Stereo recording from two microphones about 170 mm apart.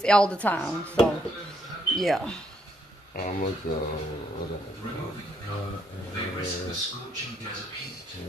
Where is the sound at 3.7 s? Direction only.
60° left (ahead or behind).